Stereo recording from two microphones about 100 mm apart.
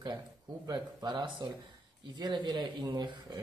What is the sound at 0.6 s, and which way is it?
Speech, 45° right (ahead or behind).